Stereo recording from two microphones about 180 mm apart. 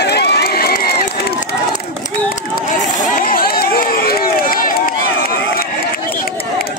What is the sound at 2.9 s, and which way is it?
Run, 50° left (ahead or behind).